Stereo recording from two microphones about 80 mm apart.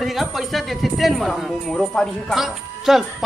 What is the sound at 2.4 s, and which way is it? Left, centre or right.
Speech, centre.